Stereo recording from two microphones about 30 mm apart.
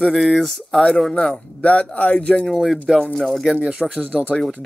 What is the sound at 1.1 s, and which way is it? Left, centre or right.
Speech, centre.